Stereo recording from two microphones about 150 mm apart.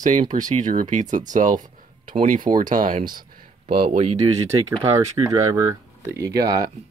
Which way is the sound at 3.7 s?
45° right (ahead or behind).